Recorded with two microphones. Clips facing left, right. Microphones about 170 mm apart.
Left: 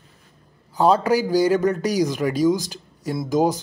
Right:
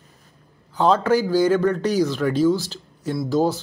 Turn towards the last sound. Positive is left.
turn(degrees=15)  # may be behind; listen again after turning